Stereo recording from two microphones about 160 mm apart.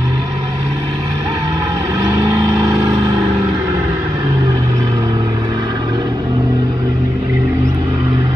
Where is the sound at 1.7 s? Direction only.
20° right (ahead or behind).